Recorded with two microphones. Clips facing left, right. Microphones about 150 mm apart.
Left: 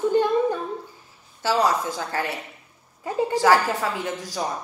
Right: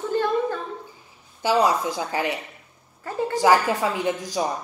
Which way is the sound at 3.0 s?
15° left (ahead or behind).